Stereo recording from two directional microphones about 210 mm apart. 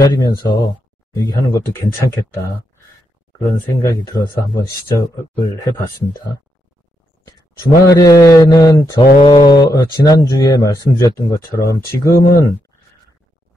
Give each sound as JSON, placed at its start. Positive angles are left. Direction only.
{"t": 0.0, "sound": "speech", "side_deg": 15}
{"t": 3.3, "sound": "speech", "side_deg": 15}
{"t": 7.8, "sound": "speech", "side_deg": 15}